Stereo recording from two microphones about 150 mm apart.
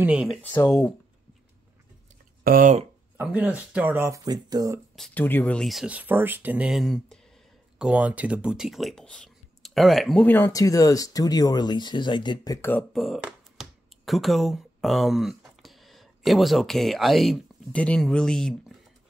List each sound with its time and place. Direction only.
0.0 s speech: 5° right (ahead or behind)
0.4 s speech: 15° left (ahead or behind)
2.4 s speech: 70° right (ahead or behind)
3.2 s speech: 10° right (ahead or behind); by 4.7 s 25° right (ahead or behind)
4.9 s speech: 5° left (ahead or behind)
10.2 s speech: 15° left (ahead or behind); by 12.5 s 30° left (ahead or behind)
12.9 s speech: centre (ahead or behind)